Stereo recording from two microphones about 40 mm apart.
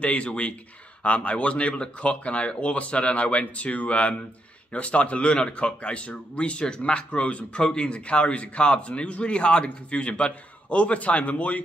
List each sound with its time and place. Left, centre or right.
0.0 s a man's voice: left